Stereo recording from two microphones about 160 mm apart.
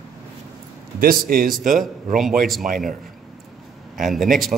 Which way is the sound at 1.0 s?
65° right (ahead or behind).